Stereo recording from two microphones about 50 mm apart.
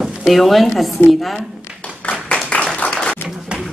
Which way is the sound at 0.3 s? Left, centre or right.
Centre.